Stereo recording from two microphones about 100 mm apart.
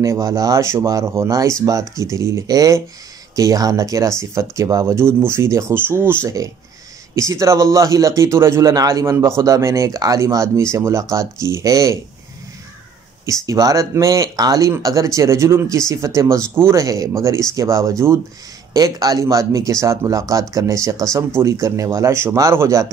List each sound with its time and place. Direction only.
0.0 s speech: 30° right (ahead or behind)
13.2 s speech: 30° right (ahead or behind)